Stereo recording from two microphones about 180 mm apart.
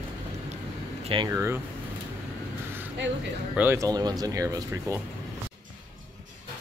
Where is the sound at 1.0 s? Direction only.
30° right (ahead or behind).